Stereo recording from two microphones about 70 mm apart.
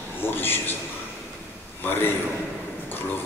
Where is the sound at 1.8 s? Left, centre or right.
Left.